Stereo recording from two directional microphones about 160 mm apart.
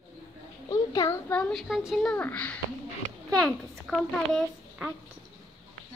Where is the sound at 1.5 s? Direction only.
Centre (ahead or behind).